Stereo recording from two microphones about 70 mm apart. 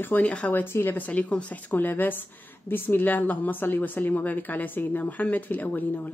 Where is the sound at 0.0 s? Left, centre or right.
Left.